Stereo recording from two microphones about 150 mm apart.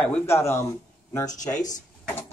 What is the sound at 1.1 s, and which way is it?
Speech, 25° left (ahead or behind).